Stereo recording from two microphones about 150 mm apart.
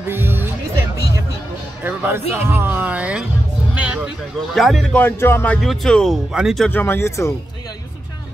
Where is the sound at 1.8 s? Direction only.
10° right (ahead or behind).